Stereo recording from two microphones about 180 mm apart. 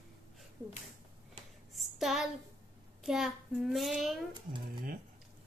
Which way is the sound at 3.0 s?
Centre (ahead or behind).